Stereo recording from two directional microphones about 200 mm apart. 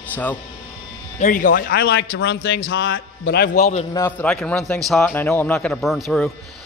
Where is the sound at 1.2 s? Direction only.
40° left (ahead or behind).